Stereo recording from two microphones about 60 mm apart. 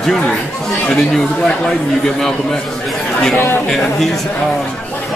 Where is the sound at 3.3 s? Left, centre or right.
Left.